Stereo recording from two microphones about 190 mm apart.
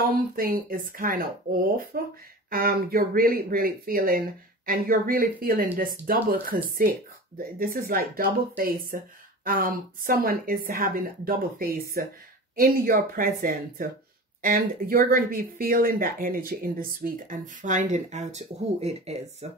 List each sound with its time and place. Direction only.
0.0 s speech: 50° right (ahead or behind); by 19.6 s 30° right (ahead or behind)